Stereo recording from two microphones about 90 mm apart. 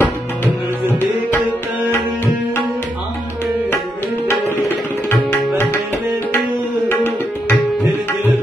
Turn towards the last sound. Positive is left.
turn(degrees=20)  # may be behind; listen again after turning